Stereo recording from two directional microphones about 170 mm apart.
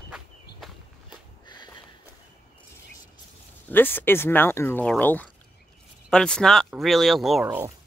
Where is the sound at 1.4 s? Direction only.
25° left (ahead or behind).